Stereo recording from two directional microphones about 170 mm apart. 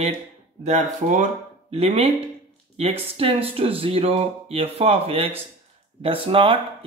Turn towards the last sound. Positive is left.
turn(degrees=-30)  # may be behind; listen again after turning